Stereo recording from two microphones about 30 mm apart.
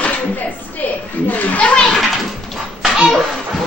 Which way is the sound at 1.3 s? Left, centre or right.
Left.